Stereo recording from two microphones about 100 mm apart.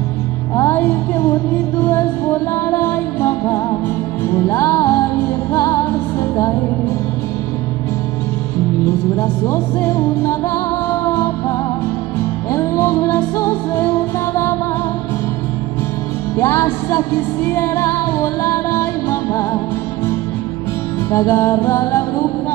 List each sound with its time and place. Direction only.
0.6 s music: 20° left (ahead or behind)
9.2 s music: 25° left (ahead or behind)
12.4 s music: 25° left (ahead or behind)
16.3 s music: 25° left (ahead or behind)
21.1 s music: 25° left (ahead or behind)